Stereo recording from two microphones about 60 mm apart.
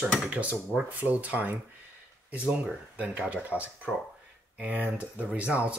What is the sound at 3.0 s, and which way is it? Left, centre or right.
Speech, right.